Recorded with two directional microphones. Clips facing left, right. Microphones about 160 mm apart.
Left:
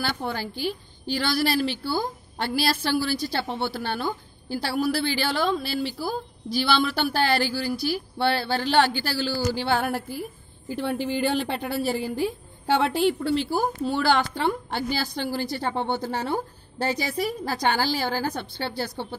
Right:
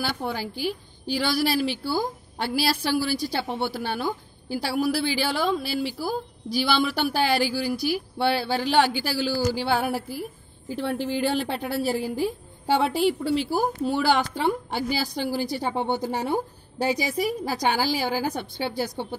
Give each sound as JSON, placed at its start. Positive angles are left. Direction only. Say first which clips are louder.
{"t": 0.0, "sound": "a woman's voice", "louder": "even", "side_deg": -5}